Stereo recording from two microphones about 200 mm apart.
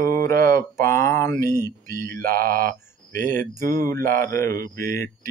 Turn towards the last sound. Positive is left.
turn(degrees=15)  # may be behind; listen again after turning